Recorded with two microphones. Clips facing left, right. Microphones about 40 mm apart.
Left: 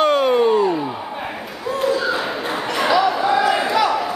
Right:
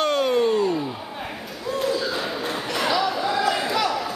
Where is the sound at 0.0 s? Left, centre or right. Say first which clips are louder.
Left 5 dB; centre.